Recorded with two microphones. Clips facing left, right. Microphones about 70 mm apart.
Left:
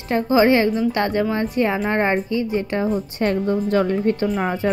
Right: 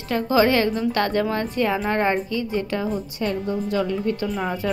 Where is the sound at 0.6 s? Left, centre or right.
Centre.